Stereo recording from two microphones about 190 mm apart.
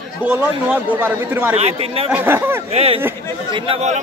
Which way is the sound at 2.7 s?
30° right (ahead or behind).